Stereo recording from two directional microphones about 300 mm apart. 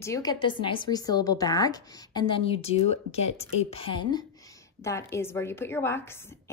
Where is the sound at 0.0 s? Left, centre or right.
Centre.